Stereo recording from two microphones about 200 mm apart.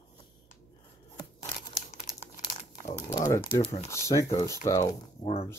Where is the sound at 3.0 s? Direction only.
15° left (ahead or behind).